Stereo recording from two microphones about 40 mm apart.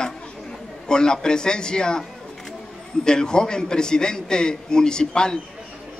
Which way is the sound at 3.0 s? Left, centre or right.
Centre.